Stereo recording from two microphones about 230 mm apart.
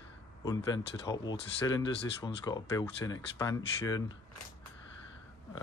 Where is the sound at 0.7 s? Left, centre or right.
Centre.